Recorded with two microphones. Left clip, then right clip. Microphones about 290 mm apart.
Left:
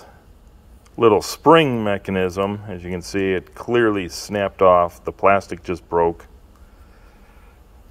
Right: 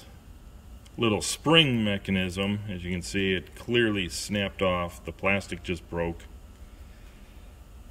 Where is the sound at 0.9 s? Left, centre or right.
Left.